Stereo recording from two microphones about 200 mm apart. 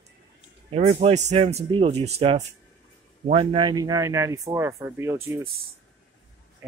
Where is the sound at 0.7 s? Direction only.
35° right (ahead or behind); by 5.2 s 15° right (ahead or behind).